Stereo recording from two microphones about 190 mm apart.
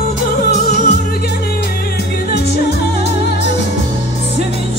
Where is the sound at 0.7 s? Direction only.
40° left (ahead or behind).